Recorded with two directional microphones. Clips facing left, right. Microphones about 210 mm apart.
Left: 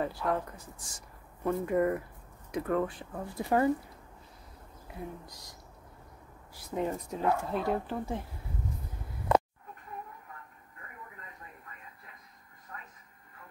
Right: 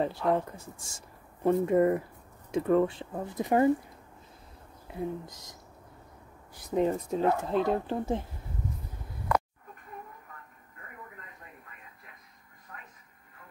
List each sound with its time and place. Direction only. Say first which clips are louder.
0.0 s speech: right 4 dB; 25° right (ahead or behind)
4.8 s speech: right 7 dB; 25° right (ahead or behind)
6.6 s speech: right 6 dB; 20° right (ahead or behind)